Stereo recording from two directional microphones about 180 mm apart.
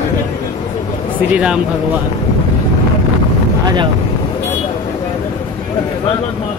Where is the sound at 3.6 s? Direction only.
25° right (ahead or behind).